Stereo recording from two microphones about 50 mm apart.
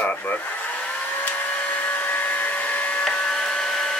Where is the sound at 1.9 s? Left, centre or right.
Left.